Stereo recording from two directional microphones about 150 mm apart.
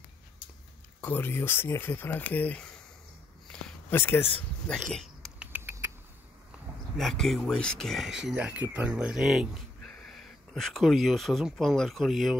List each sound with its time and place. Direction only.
1.0 s speech: 15° left (ahead or behind)
3.4 s a sound: 10° left (ahead or behind)
4.4 s speech: 5° left (ahead or behind)
5.4 s rodents: 15° right (ahead or behind)
7.0 s speech: centre (ahead or behind)